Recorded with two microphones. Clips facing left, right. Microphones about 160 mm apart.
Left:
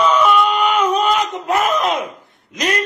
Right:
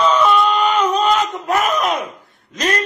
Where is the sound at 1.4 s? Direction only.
25° left (ahead or behind).